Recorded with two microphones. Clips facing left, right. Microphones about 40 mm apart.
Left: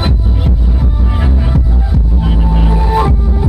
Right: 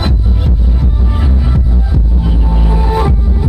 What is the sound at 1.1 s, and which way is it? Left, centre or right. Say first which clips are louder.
Music: left 2 dB; centre.